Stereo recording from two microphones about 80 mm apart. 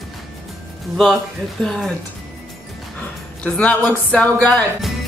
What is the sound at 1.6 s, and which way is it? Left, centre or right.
Speech, centre.